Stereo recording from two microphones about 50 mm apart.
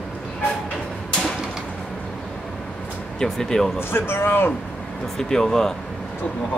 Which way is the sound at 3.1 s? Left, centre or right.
Centre.